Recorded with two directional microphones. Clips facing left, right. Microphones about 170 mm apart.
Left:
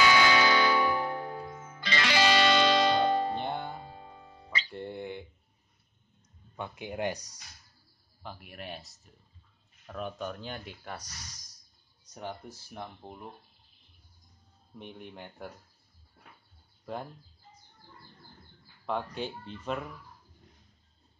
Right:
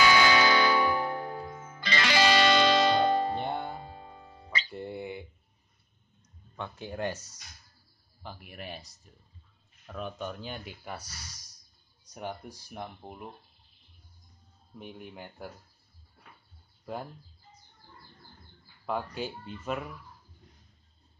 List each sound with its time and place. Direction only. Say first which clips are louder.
0.0 s music: right 1 dB; 45° right (ahead or behind)
4.6 s music: even; 5° right (ahead or behind)
6.5 s speech: left 1 dB; 15° left (ahead or behind)
8.2 s speech: even; centre (ahead or behind)
14.8 s speech: right 1 dB; 5° right (ahead or behind)
16.8 s speech: even; 5° right (ahead or behind)
18.9 s speech: even; 5° right (ahead or behind)